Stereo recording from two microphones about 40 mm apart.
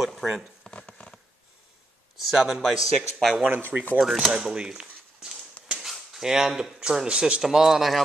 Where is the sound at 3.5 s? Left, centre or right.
Right.